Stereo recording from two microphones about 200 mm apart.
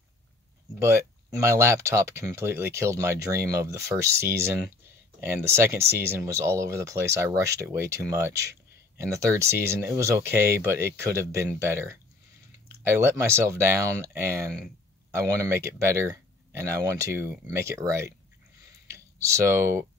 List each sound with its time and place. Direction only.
0.7 s speech: 15° right (ahead or behind)